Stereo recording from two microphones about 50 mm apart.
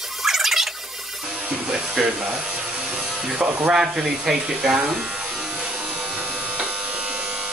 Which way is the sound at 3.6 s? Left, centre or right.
Centre.